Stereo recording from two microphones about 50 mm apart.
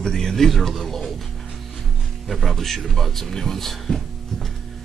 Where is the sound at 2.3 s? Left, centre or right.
Centre.